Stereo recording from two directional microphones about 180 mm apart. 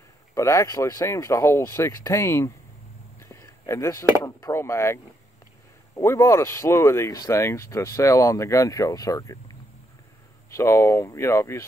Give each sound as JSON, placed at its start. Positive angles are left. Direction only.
{"t": 0.3, "sound": "speech", "side_deg": 15}
{"t": 3.2, "sound": "a sound", "side_deg": 15}
{"t": 4.2, "sound": "speech", "side_deg": 15}